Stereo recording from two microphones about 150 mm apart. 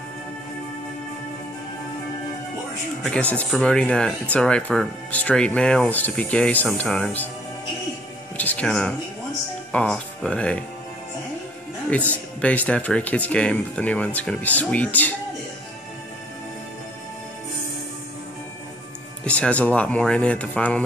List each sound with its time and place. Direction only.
3.0 s speech: 10° left (ahead or behind)
8.4 s speech: 10° left (ahead or behind)
12.1 s speech: 10° left (ahead or behind)
19.2 s speech: 10° left (ahead or behind)